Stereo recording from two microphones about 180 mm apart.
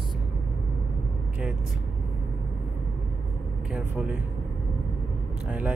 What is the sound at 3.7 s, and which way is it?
Speech, 5° right (ahead or behind).